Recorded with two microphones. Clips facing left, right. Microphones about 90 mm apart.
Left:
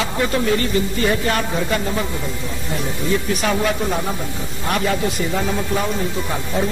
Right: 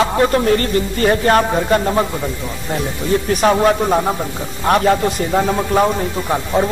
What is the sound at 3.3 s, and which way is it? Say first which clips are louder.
Speech: right 7 dB; 40° right (ahead or behind).